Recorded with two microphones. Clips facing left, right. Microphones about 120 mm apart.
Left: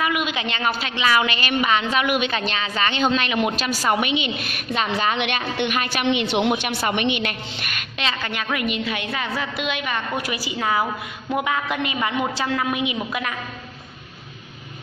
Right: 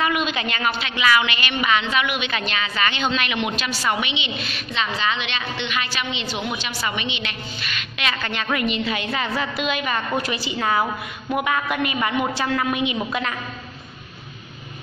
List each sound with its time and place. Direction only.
0.0 s a woman's voice: 15° left (ahead or behind)
0.7 s a woman's voice: 40° left (ahead or behind)
8.2 s a woman's voice: 10° left (ahead or behind)